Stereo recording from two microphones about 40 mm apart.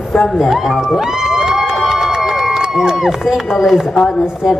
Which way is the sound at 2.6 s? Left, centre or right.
Centre.